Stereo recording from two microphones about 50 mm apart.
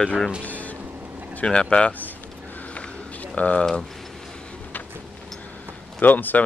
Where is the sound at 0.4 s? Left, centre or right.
Left.